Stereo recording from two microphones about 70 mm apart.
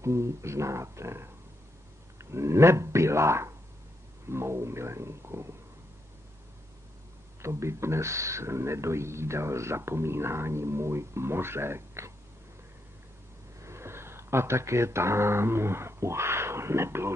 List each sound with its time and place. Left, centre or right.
0.0 s speech: right
7.4 s speech: right
13.6 s speech: right